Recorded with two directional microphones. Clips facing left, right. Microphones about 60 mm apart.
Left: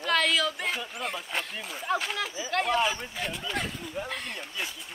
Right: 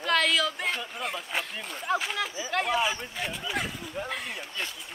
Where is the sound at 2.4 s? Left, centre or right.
Centre.